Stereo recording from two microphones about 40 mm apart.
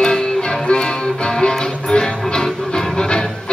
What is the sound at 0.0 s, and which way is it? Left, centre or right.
Music, centre.